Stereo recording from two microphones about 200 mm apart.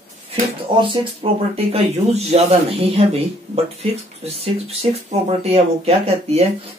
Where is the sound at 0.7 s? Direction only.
25° right (ahead or behind).